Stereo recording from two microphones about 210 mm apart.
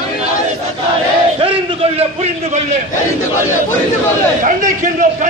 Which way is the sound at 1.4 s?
25° right (ahead or behind).